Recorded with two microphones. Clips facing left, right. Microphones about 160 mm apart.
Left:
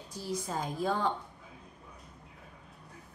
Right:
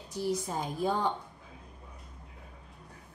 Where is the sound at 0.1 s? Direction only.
15° right (ahead or behind).